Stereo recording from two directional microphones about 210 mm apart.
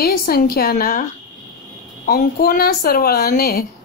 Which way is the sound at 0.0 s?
45° left (ahead or behind).